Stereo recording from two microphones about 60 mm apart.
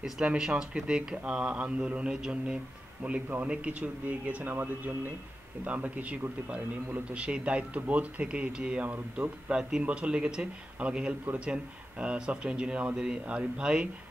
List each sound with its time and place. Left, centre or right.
0.0 s a man's voice: centre